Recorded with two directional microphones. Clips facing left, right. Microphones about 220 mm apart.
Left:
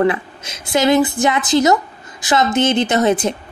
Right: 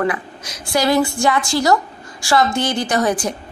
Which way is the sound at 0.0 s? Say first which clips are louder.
Left 4 dB; 25° left (ahead or behind).